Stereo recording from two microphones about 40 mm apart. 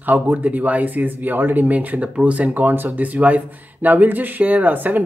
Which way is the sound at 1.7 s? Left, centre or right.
Right.